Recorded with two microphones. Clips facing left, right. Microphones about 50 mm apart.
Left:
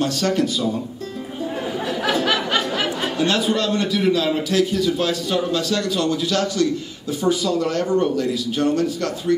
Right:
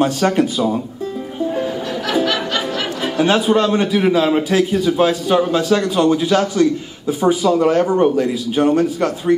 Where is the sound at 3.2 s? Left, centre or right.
Centre.